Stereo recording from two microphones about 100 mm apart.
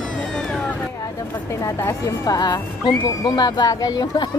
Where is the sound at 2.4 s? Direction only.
40° left (ahead or behind).